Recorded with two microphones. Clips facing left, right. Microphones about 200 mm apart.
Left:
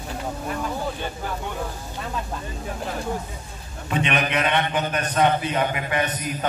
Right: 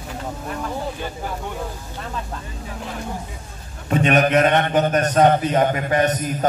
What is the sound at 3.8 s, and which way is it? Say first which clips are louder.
A man's voice: right 7 dB; 45° right (ahead or behind).